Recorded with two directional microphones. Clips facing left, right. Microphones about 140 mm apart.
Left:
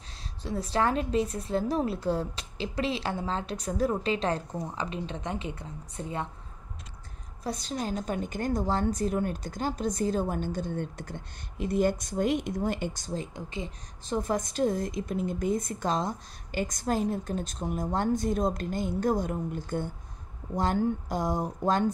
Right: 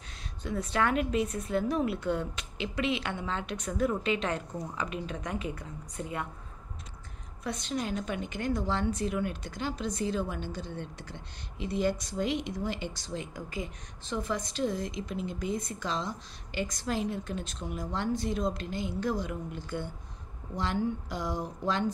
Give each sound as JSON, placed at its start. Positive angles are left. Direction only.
{"t": 0.4, "sound": "a woman's voice", "side_deg": 30}
{"t": 7.4, "sound": "a woman's voice", "side_deg": 35}
{"t": 14.0, "sound": "a woman's voice", "side_deg": 45}